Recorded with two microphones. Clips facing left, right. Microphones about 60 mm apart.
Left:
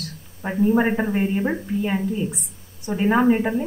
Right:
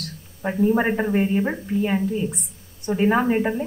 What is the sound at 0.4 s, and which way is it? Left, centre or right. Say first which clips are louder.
A man's voice: left 1 dB; centre.